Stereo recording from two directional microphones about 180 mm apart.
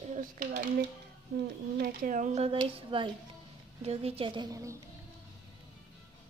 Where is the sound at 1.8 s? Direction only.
45° right (ahead or behind).